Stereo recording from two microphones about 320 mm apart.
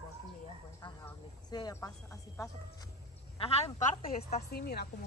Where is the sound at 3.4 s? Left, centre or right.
Centre.